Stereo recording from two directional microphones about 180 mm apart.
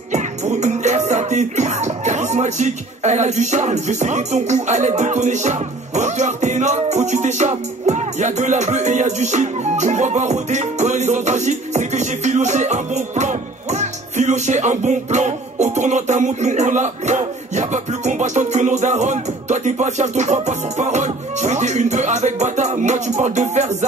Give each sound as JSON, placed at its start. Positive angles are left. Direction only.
{"t": 0.1, "sound": "music", "side_deg": -40}